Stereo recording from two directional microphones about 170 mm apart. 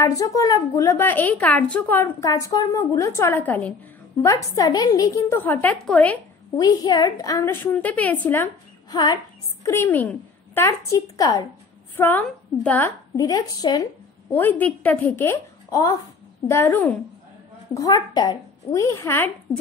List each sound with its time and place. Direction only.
0.0 s speech: 20° left (ahead or behind)
6.6 s speech: 20° left (ahead or behind)
9.6 s a woman's voice: 15° left (ahead or behind)
12.0 s a woman's voice: 10° left (ahead or behind)
14.3 s speech: 10° left (ahead or behind)